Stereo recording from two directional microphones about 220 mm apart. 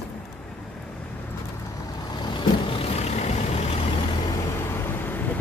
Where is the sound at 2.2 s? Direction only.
20° left (ahead or behind).